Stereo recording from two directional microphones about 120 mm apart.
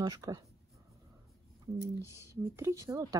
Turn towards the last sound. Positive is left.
turn(degrees=-25)  # may be behind; listen again after turning